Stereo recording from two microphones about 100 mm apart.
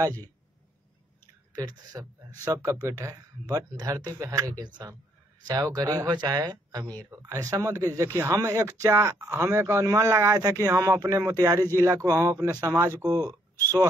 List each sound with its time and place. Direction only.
1.5 s speech: 40° right (ahead or behind)